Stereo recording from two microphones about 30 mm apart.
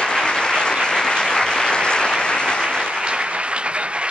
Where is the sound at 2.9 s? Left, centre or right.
Right.